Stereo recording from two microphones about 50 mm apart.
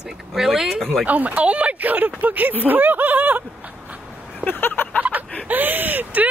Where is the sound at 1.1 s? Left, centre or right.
Right.